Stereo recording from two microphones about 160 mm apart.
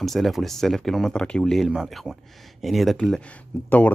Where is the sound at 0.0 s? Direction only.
Centre (ahead or behind).